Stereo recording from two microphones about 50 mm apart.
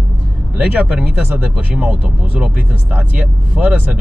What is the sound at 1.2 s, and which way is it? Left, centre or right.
Speech, right.